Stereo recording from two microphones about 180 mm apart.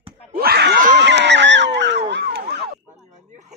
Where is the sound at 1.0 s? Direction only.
75° right (ahead or behind).